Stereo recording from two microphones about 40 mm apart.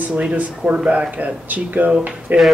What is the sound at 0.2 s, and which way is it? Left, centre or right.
Speech, right.